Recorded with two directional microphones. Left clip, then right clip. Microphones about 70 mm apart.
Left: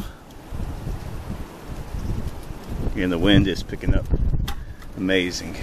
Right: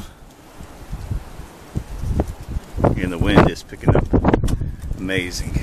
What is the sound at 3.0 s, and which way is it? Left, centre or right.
Speech, centre.